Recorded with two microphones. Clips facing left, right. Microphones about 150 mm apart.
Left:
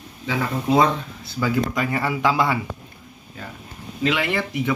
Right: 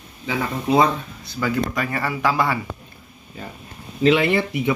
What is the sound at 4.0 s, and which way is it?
Speech, 25° right (ahead or behind).